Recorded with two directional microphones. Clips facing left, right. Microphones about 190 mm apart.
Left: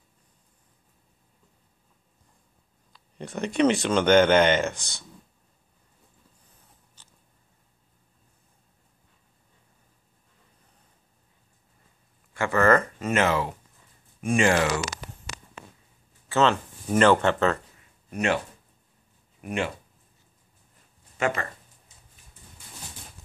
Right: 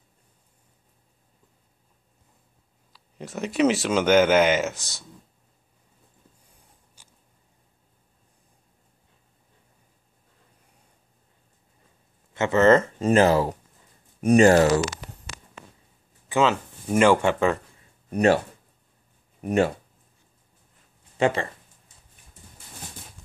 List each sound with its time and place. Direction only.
2.9 s speech: 5° right (ahead or behind)
7.0 s a sound: 10° right (ahead or behind)
12.4 s speech: 20° right (ahead or behind); by 14.7 s 40° right (ahead or behind)
16.3 s speech: 10° right (ahead or behind)
17.7 s a sound: 35° right (ahead or behind)
19.4 s speech: 40° right (ahead or behind)
21.2 s speech: 30° right (ahead or behind)